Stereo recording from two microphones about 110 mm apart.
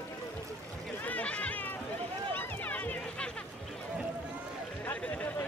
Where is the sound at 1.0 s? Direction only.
10° left (ahead or behind).